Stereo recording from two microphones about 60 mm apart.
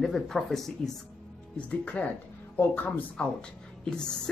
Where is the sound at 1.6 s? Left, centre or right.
Left.